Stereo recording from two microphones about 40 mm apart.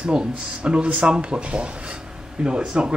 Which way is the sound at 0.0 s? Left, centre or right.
Right.